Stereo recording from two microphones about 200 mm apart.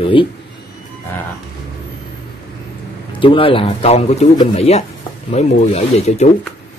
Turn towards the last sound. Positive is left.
turn(degrees=35)  # may be behind; listen again after turning